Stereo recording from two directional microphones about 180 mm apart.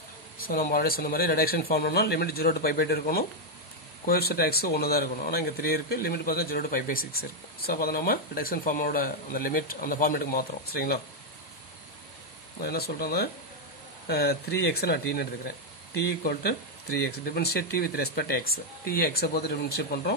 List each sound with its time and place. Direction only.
0.4 s a man's voice: 55° left (ahead or behind)
12.5 s a man's voice: 60° left (ahead or behind)